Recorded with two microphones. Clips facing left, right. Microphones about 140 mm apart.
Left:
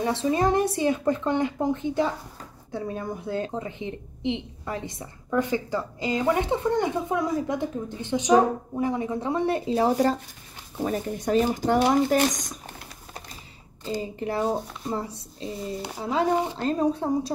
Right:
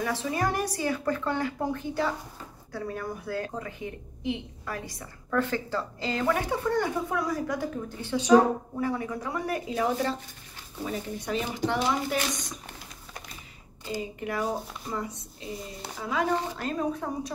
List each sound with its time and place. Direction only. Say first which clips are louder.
0.0 s a woman's voice: left 5 dB; 25° left (ahead or behind); by 12.8 s 45° left (ahead or behind)
14.2 s a woman's voice: left 5 dB; 30° left (ahead or behind)